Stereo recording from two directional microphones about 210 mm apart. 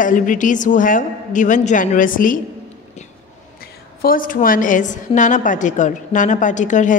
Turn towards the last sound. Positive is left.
turn(degrees=35)  # may be behind; listen again after turning